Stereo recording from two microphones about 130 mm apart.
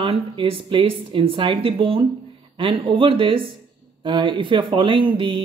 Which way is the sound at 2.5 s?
40° right (ahead or behind).